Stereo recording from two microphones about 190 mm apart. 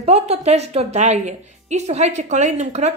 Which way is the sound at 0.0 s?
35° right (ahead or behind).